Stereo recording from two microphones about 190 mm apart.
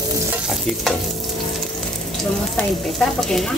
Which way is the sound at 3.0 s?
Centre (ahead or behind).